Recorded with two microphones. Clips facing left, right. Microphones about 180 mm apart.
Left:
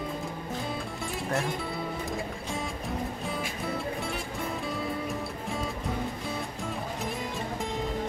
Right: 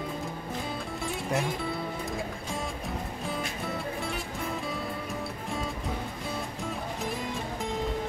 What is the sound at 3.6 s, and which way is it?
Music, centre (ahead or behind).